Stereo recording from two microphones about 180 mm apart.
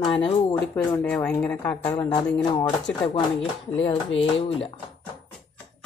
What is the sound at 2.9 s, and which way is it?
Speech, 5° left (ahead or behind).